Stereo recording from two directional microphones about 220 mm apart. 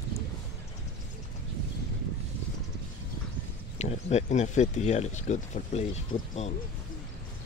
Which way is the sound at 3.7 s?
30° left (ahead or behind).